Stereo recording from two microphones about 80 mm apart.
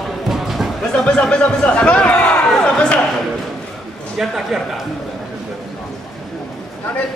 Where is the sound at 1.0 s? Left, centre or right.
Centre.